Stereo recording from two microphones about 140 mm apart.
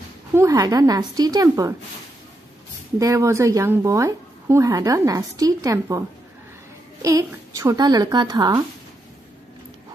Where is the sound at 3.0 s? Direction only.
20° right (ahead or behind).